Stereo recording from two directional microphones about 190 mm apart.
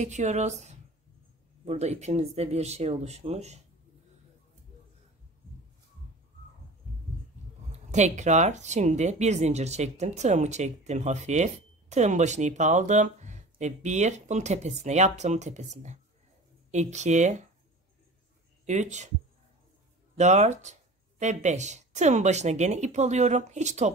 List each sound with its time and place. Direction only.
0.0 s speech: 40° right (ahead or behind)
7.7 s speech: 40° right (ahead or behind)
18.7 s speech: 40° right (ahead or behind)
20.2 s speech: 35° right (ahead or behind)